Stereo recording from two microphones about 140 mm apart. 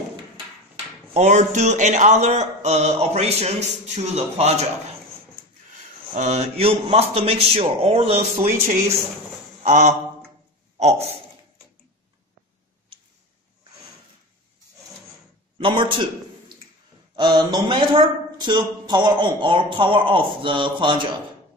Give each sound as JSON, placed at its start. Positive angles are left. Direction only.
{"t": 1.1, "sound": "speech", "side_deg": -55}
{"t": 6.1, "sound": "speech", "side_deg": -55}
{"t": 8.4, "sound": "speech", "side_deg": -60}
{"t": 15.5, "sound": "a man's voice", "side_deg": -35}
{"t": 17.1, "sound": "speech", "side_deg": -30}